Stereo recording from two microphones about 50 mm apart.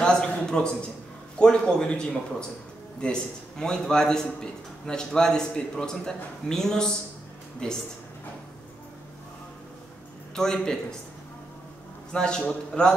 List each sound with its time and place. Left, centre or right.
0.0 s a sound: centre
1.4 s a man's voice: centre
10.3 s a man's voice: centre
12.1 s a man's voice: centre